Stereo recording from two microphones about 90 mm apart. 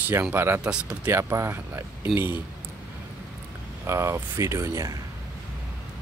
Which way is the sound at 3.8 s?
30° right (ahead or behind).